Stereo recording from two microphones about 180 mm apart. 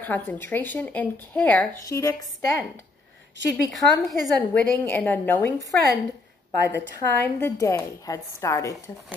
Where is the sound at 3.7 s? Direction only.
Centre (ahead or behind).